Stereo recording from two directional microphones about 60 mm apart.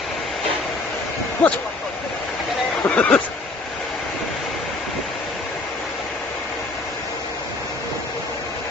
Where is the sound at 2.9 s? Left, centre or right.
Centre.